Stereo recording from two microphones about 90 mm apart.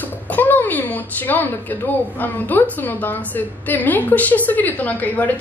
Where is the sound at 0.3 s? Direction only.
20° left (ahead or behind).